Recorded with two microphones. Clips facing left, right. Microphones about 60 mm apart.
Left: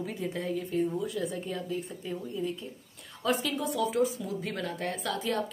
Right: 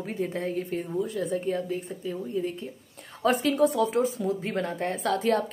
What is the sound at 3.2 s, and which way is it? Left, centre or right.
A woman's voice, right.